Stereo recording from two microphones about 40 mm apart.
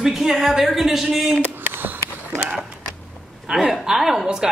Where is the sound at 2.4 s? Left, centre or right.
Right.